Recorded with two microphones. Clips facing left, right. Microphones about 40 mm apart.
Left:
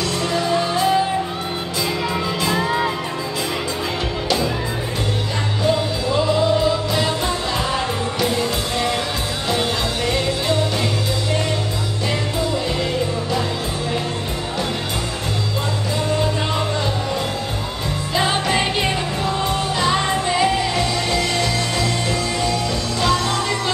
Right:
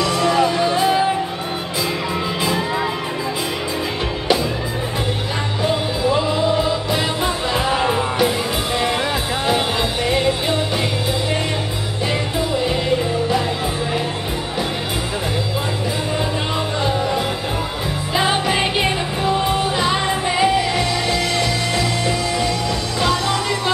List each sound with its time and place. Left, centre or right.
0.0 s music: right
5.6 s music: centre
10.0 s music: centre
18.1 s music: centre